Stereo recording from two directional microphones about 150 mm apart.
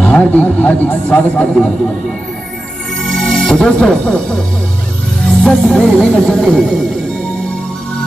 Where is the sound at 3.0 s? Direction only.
Centre (ahead or behind).